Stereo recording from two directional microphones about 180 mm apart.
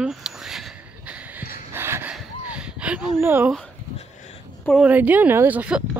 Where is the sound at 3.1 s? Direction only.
10° right (ahead or behind).